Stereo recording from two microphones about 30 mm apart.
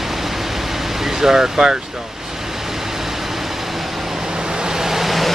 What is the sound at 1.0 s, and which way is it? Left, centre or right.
Speech, centre.